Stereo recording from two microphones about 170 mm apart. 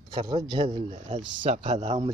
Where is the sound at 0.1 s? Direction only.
25° right (ahead or behind).